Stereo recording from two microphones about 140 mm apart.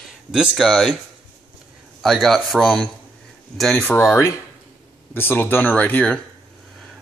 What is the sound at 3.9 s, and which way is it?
Speech, 20° left (ahead or behind).